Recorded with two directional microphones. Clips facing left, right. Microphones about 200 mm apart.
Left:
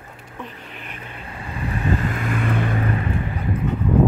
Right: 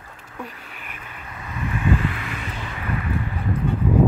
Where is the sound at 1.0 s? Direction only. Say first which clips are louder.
Left 3 dB; 30° left (ahead or behind); by 2.8 s 55° left (ahead or behind).